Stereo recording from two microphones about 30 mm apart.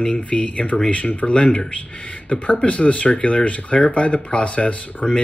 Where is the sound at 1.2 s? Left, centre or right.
Centre.